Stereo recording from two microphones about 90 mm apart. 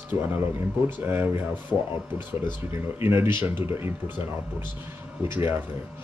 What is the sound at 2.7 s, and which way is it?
Speech, 30° right (ahead or behind).